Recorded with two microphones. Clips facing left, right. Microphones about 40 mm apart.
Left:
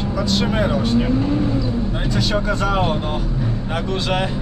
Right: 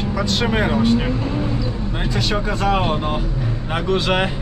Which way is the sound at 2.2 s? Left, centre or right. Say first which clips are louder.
Left 1 dB; centre.